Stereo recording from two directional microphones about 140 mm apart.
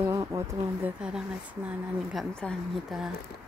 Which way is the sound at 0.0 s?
20° right (ahead or behind).